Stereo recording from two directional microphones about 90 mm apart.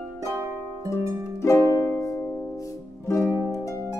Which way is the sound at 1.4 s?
35° left (ahead or behind).